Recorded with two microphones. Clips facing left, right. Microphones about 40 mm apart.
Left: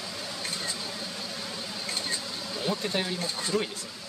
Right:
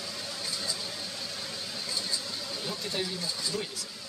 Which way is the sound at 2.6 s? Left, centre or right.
Left.